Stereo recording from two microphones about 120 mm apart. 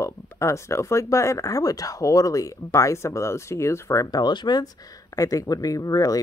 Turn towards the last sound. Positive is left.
turn(degrees=30)  # may be behind; listen again after turning